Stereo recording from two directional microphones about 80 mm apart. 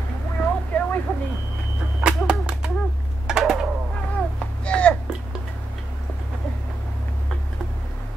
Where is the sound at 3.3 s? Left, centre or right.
Centre.